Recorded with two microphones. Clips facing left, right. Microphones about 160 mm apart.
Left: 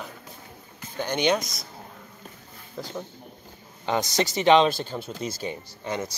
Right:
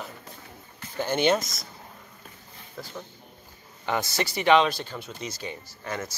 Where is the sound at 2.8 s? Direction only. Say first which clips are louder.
Left 5 dB; 20° left (ahead or behind).